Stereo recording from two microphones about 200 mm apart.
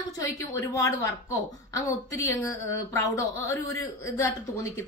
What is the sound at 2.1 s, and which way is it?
A woman's voice, 15° left (ahead or behind).